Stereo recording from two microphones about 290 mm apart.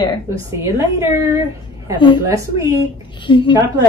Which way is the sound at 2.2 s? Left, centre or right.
Centre.